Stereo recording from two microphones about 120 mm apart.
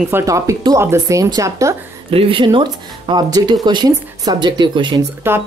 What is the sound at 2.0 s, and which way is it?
Speech, 50° right (ahead or behind).